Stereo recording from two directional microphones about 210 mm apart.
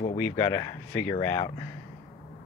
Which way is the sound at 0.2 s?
15° left (ahead or behind).